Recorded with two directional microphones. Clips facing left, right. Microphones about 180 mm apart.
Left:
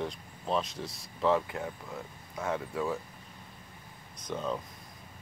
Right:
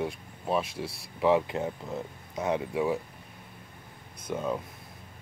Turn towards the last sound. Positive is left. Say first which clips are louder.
# right 3 dB
turn(degrees=-10)  # may be behind; listen again after turning